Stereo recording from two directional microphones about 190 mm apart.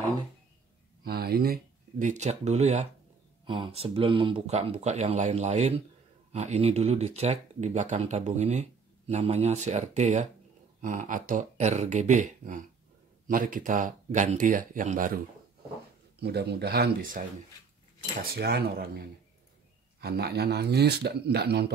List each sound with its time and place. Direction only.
1.0 s speech: 55° right (ahead or behind)
16.2 s speech: 60° right (ahead or behind)
18.2 s speech: 55° right (ahead or behind)